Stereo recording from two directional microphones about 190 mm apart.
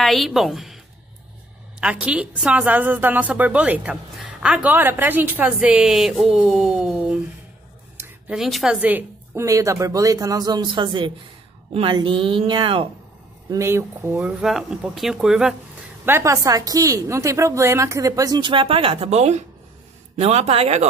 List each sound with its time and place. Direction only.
0.0 s a woman's voice: centre (ahead or behind)
1.8 s a woman's voice: 5° right (ahead or behind); by 12.9 s 25° right (ahead or behind)
13.5 s a woman's voice: 15° right (ahead or behind)
14.4 s speech: centre (ahead or behind)
16.1 s a woman's voice: 15° right (ahead or behind); by 20.9 s 35° right (ahead or behind)